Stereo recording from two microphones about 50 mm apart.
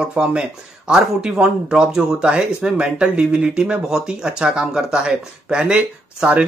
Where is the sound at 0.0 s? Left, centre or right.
Centre.